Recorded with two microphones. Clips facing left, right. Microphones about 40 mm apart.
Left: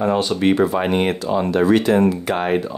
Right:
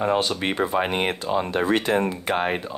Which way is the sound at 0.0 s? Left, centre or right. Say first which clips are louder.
Left 5 dB; right.